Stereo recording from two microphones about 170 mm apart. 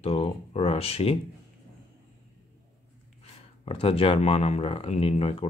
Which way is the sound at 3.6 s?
35° left (ahead or behind).